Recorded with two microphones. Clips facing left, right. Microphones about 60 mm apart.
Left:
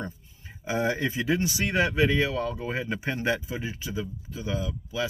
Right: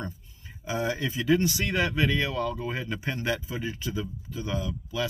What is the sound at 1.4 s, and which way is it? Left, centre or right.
Speech, centre.